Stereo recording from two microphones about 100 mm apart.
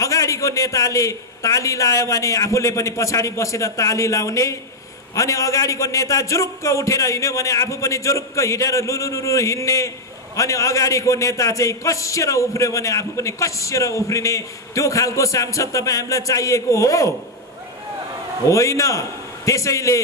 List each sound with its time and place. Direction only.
0.0 s a man's voice: 30° left (ahead or behind)
18.5 s a man's voice: 30° left (ahead or behind)